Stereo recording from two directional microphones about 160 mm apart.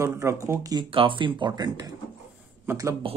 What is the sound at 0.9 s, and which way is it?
Speech, 30° right (ahead or behind).